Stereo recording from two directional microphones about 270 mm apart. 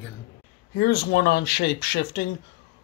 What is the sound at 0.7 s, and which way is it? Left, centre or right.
Speech, left.